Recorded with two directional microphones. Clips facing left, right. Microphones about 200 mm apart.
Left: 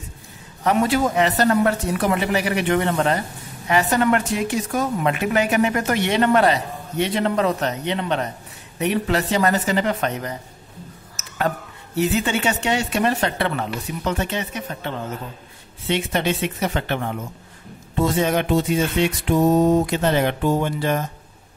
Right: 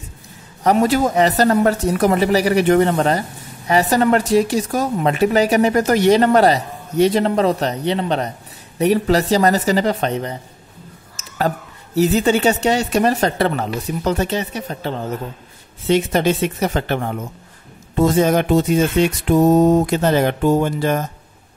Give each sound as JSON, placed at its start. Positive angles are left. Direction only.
{"t": 0.7, "sound": "speech", "side_deg": -40}
{"t": 17.9, "sound": "music", "side_deg": -40}